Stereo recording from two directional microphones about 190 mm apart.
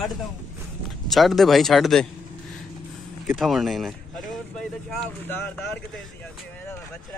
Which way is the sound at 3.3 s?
Centre (ahead or behind).